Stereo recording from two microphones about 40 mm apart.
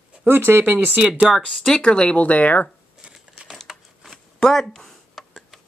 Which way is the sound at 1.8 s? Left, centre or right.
Left.